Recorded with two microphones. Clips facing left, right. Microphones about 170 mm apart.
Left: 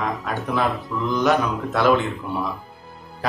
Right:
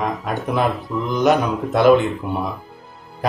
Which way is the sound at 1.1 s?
20° right (ahead or behind).